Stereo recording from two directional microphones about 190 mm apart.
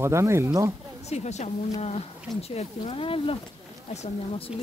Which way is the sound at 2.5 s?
30° left (ahead or behind).